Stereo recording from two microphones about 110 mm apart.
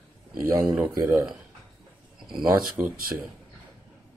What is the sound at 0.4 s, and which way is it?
Speech, 30° right (ahead or behind).